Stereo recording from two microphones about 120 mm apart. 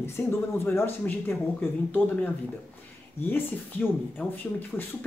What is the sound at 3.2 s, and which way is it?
Speech, 15° left (ahead or behind).